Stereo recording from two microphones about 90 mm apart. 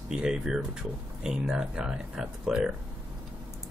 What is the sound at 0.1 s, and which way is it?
Speech, 5° right (ahead or behind).